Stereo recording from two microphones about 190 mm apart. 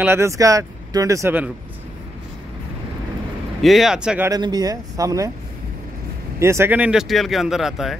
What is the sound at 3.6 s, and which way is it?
Speech, centre (ahead or behind).